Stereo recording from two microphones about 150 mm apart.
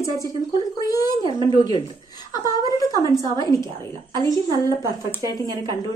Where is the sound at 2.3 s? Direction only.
25° left (ahead or behind).